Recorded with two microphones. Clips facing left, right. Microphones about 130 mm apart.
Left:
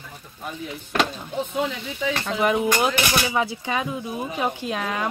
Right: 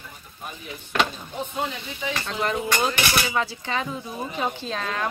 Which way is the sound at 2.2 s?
15° left (ahead or behind).